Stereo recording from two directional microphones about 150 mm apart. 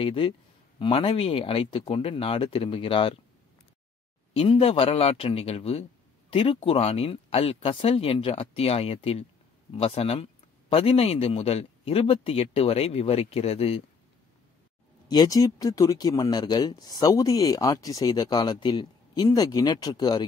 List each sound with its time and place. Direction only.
0.0 s speech: 35° left (ahead or behind)
4.3 s speech: 40° left (ahead or behind)
15.0 s speech: 25° left (ahead or behind)